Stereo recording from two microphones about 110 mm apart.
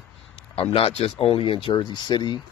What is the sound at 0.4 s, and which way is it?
Speech, 55° left (ahead or behind).